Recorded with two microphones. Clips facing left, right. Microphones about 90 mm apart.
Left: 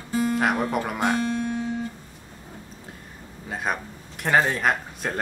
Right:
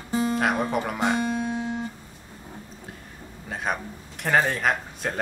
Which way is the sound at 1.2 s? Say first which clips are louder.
Left 1 dB; 20° right (ahead or behind).